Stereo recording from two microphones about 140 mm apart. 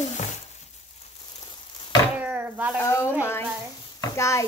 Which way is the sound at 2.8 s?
20° left (ahead or behind).